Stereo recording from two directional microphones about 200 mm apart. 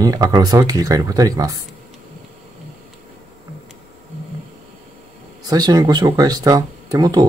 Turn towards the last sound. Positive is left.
turn(degrees=-20)  # may be behind; listen again after turning